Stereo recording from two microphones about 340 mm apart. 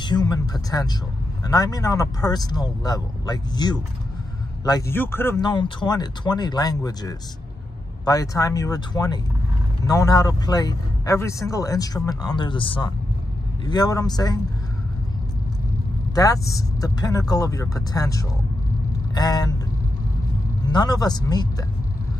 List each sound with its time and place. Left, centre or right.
0.0 s speech: centre
16.2 s speech: centre
20.7 s speech: centre